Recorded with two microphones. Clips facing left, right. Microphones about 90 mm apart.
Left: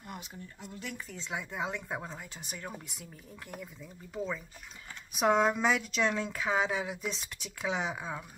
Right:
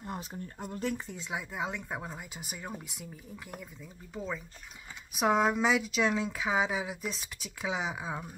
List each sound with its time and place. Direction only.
0.0 s a sound: 30° right (ahead or behind)
0.6 s speech: 45° right (ahead or behind)
1.1 s speech: 10° right (ahead or behind)
4.1 s speech: centre (ahead or behind)